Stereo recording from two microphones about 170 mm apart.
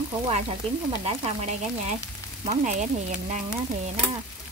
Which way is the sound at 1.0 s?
40° right (ahead or behind).